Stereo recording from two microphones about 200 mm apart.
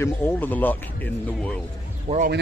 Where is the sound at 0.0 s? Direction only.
10° left (ahead or behind).